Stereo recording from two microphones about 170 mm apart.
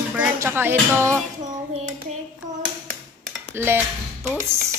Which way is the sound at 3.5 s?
15° right (ahead or behind).